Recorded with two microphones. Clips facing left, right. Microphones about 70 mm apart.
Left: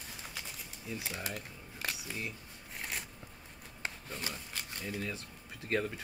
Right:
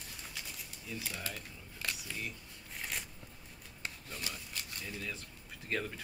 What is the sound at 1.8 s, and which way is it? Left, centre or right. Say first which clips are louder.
Camera: left 1 dB; left.